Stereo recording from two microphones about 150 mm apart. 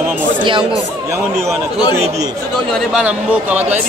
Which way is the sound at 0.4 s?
35° right (ahead or behind).